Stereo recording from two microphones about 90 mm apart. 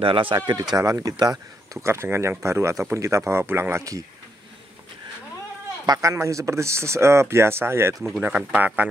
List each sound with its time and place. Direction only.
0.0 s speech: 80° right
0.4 s speech: 45° right (ahead or behind)
5.9 s speech: 35° right (ahead or behind)
8.2 s speech: 15° right (ahead or behind)